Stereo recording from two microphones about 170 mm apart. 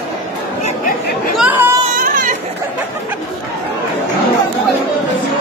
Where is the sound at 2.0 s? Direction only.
55° right (ahead or behind).